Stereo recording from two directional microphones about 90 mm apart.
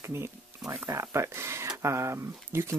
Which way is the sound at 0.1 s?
30° right (ahead or behind).